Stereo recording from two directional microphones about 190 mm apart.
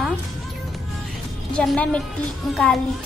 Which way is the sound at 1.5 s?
5° left (ahead or behind).